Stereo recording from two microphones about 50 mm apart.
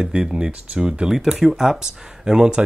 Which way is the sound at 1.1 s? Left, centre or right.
Centre.